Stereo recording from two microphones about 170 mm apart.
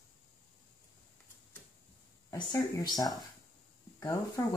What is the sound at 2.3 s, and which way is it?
Speech, 20° left (ahead or behind).